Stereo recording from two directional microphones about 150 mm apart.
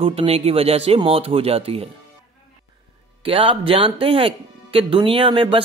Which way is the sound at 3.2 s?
35° right (ahead or behind).